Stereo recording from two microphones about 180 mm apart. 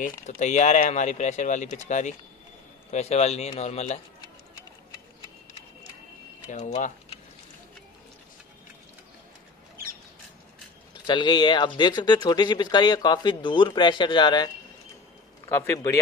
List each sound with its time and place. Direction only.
0.3 s speech: 40° left (ahead or behind)
6.5 s speech: 40° left (ahead or behind)
11.1 s speech: 25° left (ahead or behind)
15.5 s speech: 15° left (ahead or behind)